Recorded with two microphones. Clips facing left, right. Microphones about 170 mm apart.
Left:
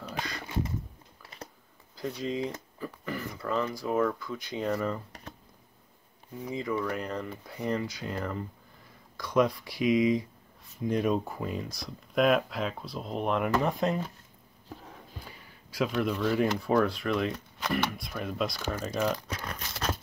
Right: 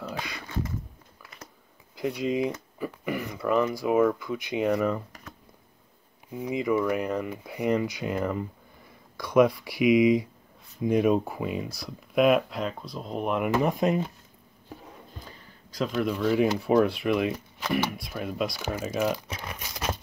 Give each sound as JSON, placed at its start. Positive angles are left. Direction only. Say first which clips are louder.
{"t": 1.2, "sound": "a sound", "louder": "left 2 dB", "side_deg": 30}
{"t": 2.0, "sound": "speech", "louder": "right 5 dB", "side_deg": -10}
{"t": 6.3, "sound": "speech", "louder": "right 6 dB", "side_deg": -15}
{"t": 13.5, "sound": "speech", "louder": "right 3 dB", "side_deg": -15}
{"t": 15.2, "sound": "a sound", "louder": "right 1 dB", "side_deg": 10}
{"t": 15.9, "sound": "speech", "louder": "right 4 dB", "side_deg": 0}
{"t": 19.2, "sound": "crumpling", "louder": "even", "side_deg": -15}